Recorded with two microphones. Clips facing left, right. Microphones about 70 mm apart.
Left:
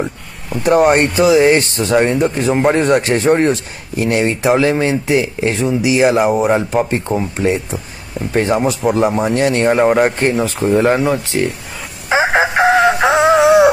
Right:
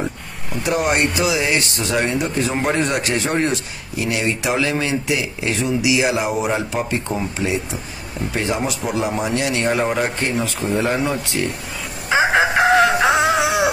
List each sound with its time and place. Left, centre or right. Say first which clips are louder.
0.7 s speech: left 8 dB; left
12.1 s a sound: left 2 dB; left
13.0 s music: left 6 dB; left